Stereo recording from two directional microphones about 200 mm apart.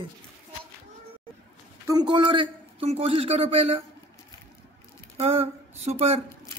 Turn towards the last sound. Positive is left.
turn(degrees=-30)  # may be behind; listen again after turning